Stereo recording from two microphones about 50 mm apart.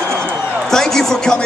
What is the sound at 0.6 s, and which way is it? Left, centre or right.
Speech, centre.